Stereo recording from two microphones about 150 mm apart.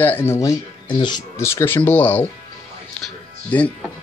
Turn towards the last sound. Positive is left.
turn(degrees=10)  # may be behind; listen again after turning